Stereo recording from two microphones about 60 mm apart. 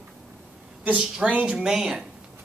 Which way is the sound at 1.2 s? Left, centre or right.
Right.